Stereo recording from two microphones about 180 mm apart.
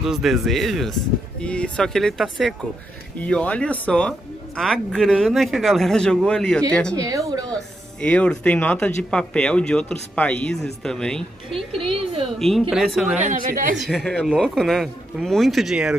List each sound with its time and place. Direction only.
0.0 s speech: centre (ahead or behind)
7.0 s speech: 20° right (ahead or behind)
7.5 s speech: 5° left (ahead or behind)
11.8 s a woman's voice: 30° right (ahead or behind)
12.4 s speech: centre (ahead or behind)
13.2 s a woman's voice: 45° right (ahead or behind)
13.7 s speech: centre (ahead or behind)